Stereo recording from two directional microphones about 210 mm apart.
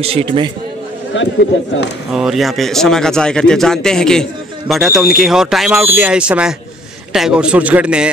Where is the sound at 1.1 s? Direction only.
60° left (ahead or behind).